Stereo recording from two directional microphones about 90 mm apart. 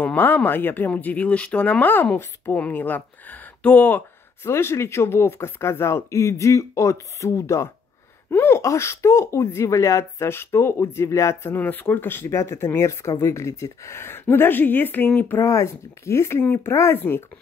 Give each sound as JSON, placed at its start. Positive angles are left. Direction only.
{"t": 0.0, "sound": "speech", "side_deg": 20}
{"t": 4.5, "sound": "speech", "side_deg": 30}
{"t": 12.3, "sound": "speech", "side_deg": 35}
{"t": 15.3, "sound": "speech", "side_deg": 30}